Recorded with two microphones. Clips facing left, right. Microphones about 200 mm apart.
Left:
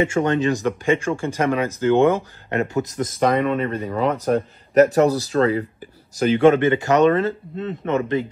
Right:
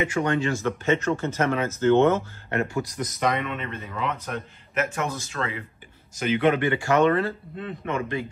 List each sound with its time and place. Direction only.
0.0 s speech: 25° left (ahead or behind)
3.0 s speech: 45° left (ahead or behind)
6.6 s speech: 20° left (ahead or behind)